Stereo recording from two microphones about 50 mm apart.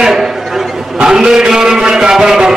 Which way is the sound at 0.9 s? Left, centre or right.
Centre.